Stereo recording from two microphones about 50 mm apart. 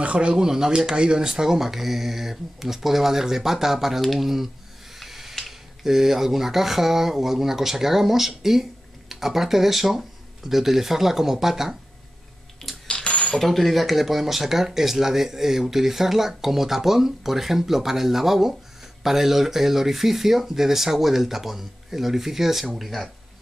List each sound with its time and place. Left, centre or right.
0.0 s speech: right; by 4.5 s centre
4.9 s snort: centre
5.9 s speech: centre
12.8 s coin: left
13.3 s speech: centre